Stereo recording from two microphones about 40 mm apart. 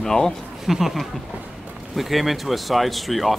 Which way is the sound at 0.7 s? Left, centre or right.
Centre.